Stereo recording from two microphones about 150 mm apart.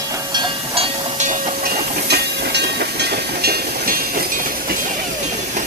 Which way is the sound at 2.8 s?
90° right.